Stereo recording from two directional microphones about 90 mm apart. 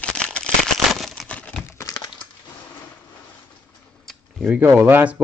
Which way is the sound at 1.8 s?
45° left (ahead or behind).